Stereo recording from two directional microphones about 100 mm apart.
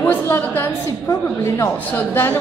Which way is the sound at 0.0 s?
20° left (ahead or behind).